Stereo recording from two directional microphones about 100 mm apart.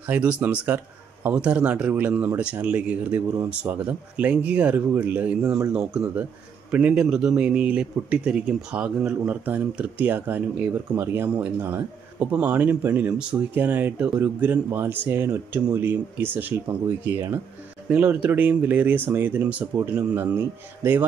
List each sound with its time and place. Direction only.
0.1 s speech: 15° right (ahead or behind)